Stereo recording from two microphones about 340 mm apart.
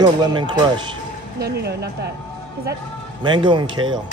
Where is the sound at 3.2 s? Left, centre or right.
Centre.